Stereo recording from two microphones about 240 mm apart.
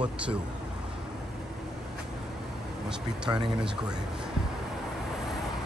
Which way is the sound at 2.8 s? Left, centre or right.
Centre.